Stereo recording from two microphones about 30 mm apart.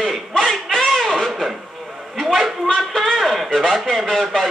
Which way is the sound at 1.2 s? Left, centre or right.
Centre.